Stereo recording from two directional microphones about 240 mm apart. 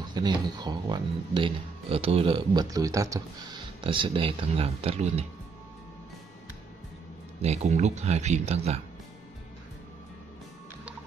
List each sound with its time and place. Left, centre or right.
0.1 s speech: centre
7.4 s speech: right